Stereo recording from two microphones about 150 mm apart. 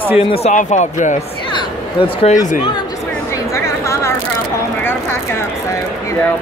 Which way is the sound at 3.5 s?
20° left (ahead or behind).